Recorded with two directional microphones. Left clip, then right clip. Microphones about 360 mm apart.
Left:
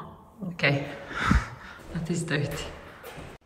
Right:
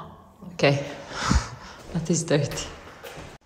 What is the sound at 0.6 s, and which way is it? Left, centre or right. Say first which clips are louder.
Speech: right 4 dB; centre.